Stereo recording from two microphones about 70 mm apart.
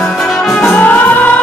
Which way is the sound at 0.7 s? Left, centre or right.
Left.